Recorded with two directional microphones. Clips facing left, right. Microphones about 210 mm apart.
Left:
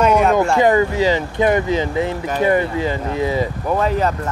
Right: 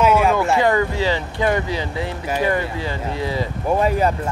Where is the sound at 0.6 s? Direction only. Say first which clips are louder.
Left 4 dB; 15° left (ahead or behind).